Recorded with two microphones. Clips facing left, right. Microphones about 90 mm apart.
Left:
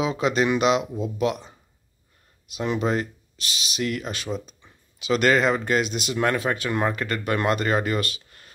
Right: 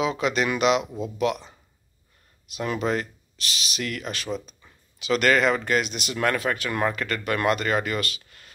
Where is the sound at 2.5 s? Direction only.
20° left (ahead or behind).